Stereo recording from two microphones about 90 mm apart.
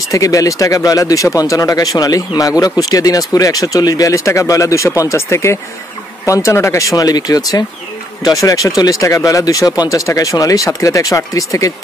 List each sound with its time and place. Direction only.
0.1 s speech: 40° left (ahead or behind)